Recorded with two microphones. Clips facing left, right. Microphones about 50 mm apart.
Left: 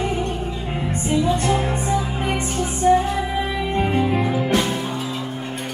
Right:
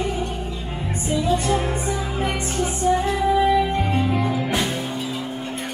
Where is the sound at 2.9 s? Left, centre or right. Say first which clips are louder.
Left 5 dB; left.